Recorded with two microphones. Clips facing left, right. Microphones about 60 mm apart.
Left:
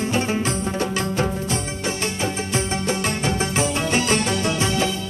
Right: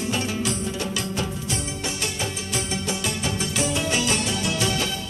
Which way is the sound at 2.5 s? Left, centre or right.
Left.